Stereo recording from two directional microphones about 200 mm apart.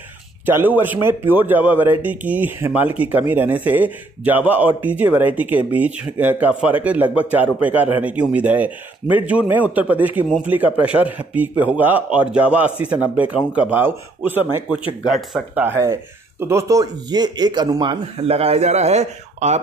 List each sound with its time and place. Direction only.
0.5 s speech: 10° right (ahead or behind); by 19.6 s 35° right (ahead or behind)